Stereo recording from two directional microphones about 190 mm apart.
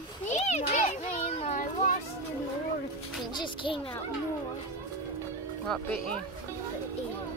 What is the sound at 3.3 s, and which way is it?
Speech, 25° left (ahead or behind).